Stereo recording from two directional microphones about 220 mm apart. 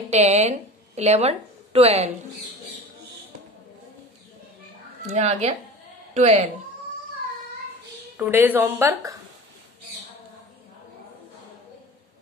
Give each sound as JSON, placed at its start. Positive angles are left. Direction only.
{"t": 0.1, "sound": "a woman's voice", "side_deg": -30}
{"t": 5.1, "sound": "speech", "side_deg": -30}
{"t": 8.2, "sound": "a woman's voice", "side_deg": -10}